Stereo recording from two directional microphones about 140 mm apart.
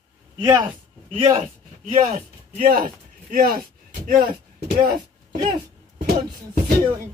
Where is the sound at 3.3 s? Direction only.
90° right.